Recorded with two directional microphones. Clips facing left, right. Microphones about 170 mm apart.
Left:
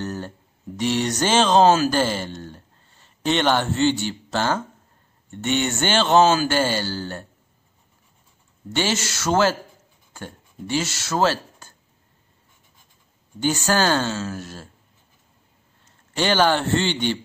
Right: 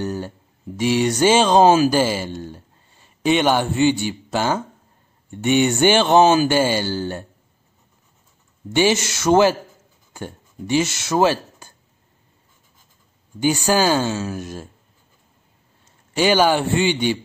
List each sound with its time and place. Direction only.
0.0 s a sound: 15° right (ahead or behind)
0.7 s speech: 10° right (ahead or behind)
8.7 s speech: 15° right (ahead or behind)
13.4 s speech: 10° right (ahead or behind)
16.2 s speech: 10° right (ahead or behind)